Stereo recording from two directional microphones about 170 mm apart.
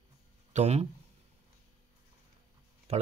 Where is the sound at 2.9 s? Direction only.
40° right (ahead or behind).